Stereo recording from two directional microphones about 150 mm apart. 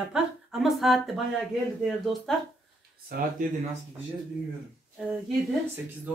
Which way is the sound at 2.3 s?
5° left (ahead or behind).